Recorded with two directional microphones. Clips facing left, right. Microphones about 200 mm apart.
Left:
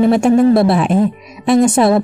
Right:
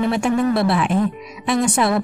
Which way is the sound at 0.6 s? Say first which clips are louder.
Left 5 dB; 25° left (ahead or behind).